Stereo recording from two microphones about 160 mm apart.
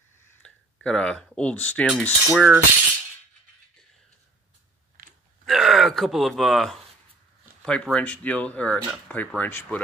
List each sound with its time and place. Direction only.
0.4 s speech: 5° left (ahead or behind)
2.3 s cutlery: centre (ahead or behind)
5.0 s a sound: 60° right (ahead or behind)
5.4 s gasp: centre (ahead or behind)
7.6 s speech: 5° left (ahead or behind)